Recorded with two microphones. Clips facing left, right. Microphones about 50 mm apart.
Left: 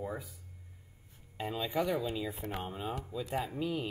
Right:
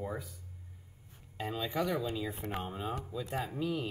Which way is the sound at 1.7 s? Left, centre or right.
Left.